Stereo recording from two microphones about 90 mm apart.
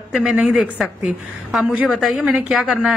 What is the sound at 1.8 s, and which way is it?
Speech, centre (ahead or behind).